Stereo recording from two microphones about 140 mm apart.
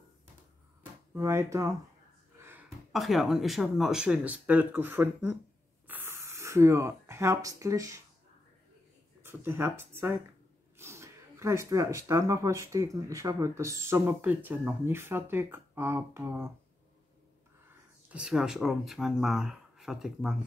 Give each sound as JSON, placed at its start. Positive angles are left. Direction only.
{"t": 1.1, "sound": "speech", "side_deg": -20}
{"t": 2.9, "sound": "speech", "side_deg": 0}
{"t": 5.9, "sound": "a sound", "side_deg": -15}
{"t": 9.2, "sound": "speech", "side_deg": -15}
{"t": 18.1, "sound": "speech", "side_deg": -5}